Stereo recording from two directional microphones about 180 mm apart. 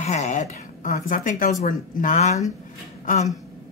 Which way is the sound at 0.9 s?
45° left (ahead or behind).